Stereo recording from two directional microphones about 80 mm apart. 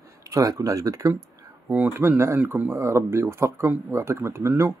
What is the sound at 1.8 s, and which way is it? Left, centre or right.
Speech, right.